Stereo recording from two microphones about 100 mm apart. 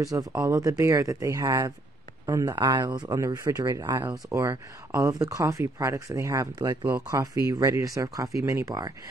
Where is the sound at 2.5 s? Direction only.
50° right (ahead or behind).